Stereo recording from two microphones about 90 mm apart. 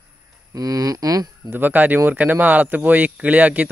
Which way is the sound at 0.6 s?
40° right (ahead or behind).